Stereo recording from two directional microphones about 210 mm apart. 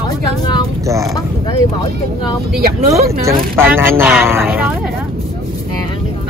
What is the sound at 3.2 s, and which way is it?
Speech, 10° right (ahead or behind).